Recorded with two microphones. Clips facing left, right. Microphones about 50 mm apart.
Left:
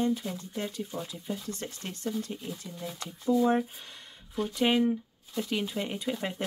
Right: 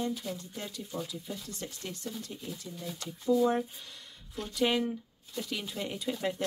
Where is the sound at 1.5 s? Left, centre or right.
Left.